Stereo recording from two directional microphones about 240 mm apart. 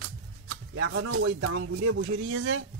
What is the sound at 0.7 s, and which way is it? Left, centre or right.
Speech, right.